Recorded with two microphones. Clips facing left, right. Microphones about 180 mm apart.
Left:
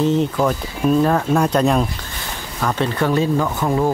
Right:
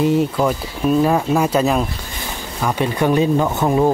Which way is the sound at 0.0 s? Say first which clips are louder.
Right 1 dB; 10° right (ahead or behind).